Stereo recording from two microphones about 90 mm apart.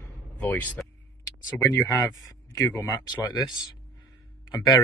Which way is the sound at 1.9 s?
35° left (ahead or behind).